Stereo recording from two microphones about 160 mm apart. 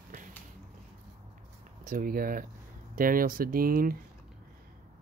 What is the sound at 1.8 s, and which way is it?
Speech, 55° right (ahead or behind).